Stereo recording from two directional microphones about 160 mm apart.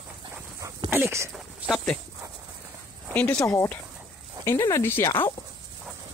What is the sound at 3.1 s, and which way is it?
Speech, 10° left (ahead or behind).